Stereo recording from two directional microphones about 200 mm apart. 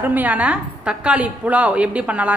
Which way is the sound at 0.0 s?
10° right (ahead or behind).